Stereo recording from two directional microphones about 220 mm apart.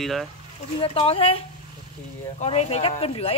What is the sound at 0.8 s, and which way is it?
A woman's voice, 25° left (ahead or behind).